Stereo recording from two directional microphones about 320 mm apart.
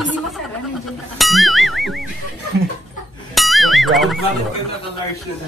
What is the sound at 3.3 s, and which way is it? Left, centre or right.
Music, centre.